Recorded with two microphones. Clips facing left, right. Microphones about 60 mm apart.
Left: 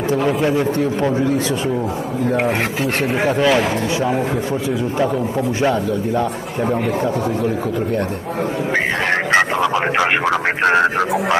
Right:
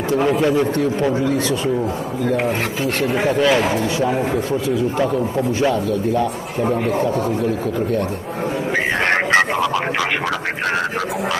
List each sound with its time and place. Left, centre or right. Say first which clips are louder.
0.2 s speech: right 3 dB; centre
3.4 s speech: even; centre